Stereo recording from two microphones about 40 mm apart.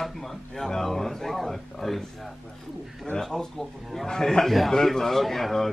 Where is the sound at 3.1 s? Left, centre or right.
Centre.